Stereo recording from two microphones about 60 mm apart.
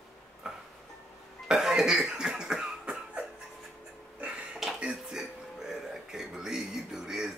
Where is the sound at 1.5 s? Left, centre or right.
Centre.